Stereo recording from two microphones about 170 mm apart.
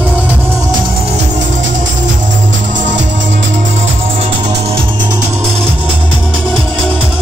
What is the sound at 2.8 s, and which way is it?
Music, 90° right.